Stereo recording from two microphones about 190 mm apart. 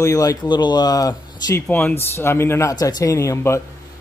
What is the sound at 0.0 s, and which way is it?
A man's voice, 20° left (ahead or behind).